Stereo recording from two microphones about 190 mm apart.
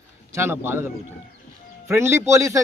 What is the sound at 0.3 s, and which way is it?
A man's voice, 10° right (ahead or behind).